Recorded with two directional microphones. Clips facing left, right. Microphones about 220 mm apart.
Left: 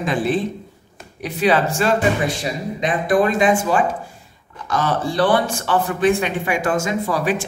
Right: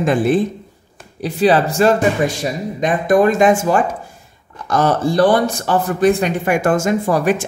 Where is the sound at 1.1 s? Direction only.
30° right (ahead or behind).